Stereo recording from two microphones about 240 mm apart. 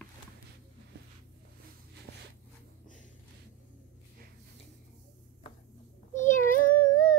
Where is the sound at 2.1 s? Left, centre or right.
Right.